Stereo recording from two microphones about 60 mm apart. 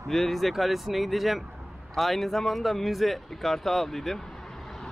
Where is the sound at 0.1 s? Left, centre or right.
Centre.